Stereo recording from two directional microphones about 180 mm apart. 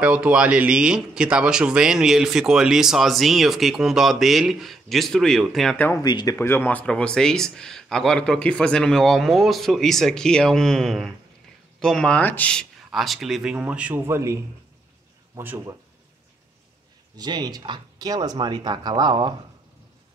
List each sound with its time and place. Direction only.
0.0 s speech: 5° right (ahead or behind)
5.9 s speech: 20° left (ahead or behind); by 15.7 s 15° right (ahead or behind)
17.2 s speech: 25° right (ahead or behind)